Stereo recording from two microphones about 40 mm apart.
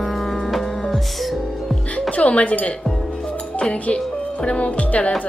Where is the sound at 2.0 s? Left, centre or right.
Left.